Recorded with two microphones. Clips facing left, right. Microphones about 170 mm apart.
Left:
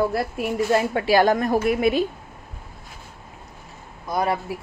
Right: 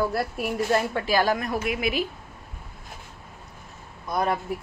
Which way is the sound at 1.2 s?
35° left (ahead or behind).